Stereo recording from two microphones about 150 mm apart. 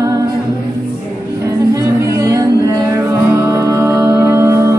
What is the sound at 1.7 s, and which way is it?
Music, 20° right (ahead or behind).